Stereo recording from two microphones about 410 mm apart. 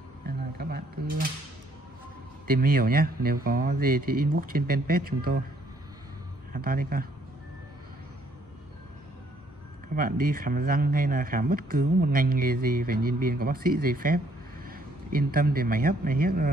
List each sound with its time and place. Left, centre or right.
0.6 s speech: right
2.4 s speech: right
6.5 s speech: right
9.9 s speech: right